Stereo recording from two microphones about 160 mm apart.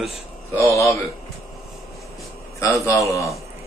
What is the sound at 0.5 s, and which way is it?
Speech, 20° left (ahead or behind).